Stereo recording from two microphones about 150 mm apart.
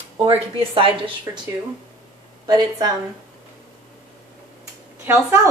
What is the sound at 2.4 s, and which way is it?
Speech, 25° right (ahead or behind).